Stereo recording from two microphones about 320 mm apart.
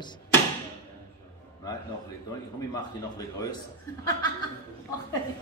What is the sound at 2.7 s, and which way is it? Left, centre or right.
Speech, centre.